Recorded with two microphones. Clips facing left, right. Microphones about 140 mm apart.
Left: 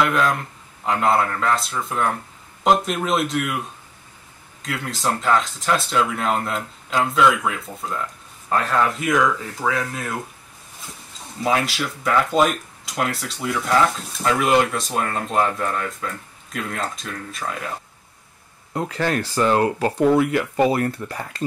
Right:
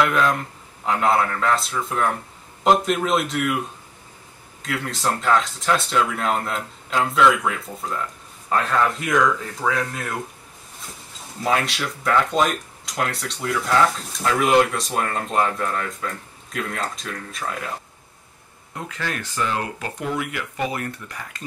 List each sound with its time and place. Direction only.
0.0 s speech: centre (ahead or behind)
4.6 s speech: centre (ahead or behind)
11.4 s speech: centre (ahead or behind)
18.7 s speech: 40° left (ahead or behind)